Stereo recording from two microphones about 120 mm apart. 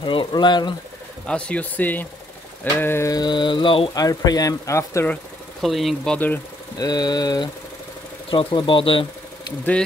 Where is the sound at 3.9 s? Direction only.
30° left (ahead or behind).